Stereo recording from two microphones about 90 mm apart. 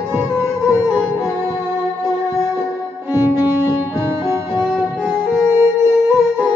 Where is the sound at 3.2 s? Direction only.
25° right (ahead or behind).